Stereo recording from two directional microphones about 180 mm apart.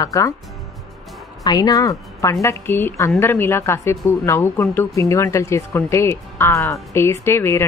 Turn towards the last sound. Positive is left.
turn(degrees=15)  # may be behind; listen again after turning